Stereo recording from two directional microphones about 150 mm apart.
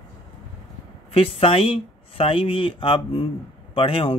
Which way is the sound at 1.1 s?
40° left (ahead or behind).